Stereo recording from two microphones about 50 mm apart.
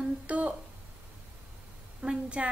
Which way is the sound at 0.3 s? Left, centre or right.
Right.